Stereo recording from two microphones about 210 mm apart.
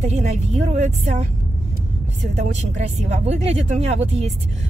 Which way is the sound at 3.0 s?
30° right (ahead or behind).